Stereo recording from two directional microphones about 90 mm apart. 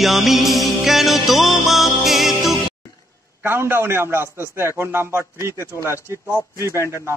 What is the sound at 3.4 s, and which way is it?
A man's voice, 25° right (ahead or behind).